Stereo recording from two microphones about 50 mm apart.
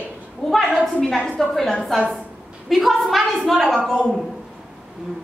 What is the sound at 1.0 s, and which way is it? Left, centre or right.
A woman's voice, centre.